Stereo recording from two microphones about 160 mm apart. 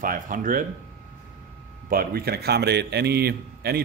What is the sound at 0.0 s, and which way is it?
Speech, 60° right (ahead or behind).